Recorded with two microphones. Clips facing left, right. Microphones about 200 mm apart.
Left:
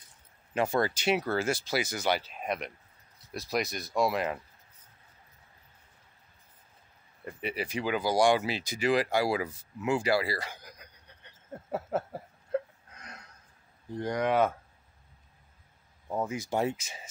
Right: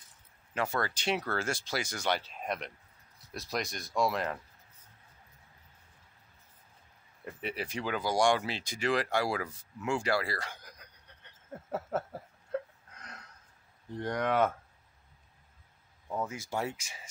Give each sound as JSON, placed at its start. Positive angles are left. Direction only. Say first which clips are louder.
{"t": 0.6, "sound": "speech", "louder": "left 5 dB", "side_deg": 15}
{"t": 7.4, "sound": "speech", "louder": "left 3 dB", "side_deg": 5}
{"t": 9.8, "sound": "a sound", "louder": "left 4 dB", "side_deg": 5}
{"t": 13.9, "sound": "speech", "louder": "left 3 dB", "side_deg": 0}
{"t": 16.1, "sound": "speech", "louder": "left 4 dB", "side_deg": 20}